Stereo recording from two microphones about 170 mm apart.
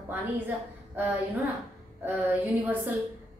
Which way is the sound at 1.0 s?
10° right (ahead or behind).